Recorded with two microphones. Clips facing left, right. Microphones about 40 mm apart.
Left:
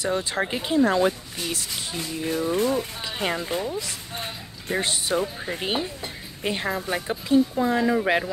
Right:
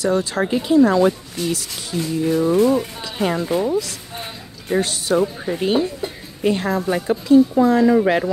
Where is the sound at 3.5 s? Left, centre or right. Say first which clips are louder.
Right 8 dB; right.